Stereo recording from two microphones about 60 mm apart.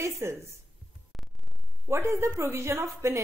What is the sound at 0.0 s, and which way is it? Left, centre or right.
Speech, right.